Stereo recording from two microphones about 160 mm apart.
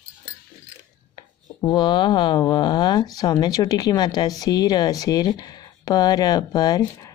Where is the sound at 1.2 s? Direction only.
30° left (ahead or behind).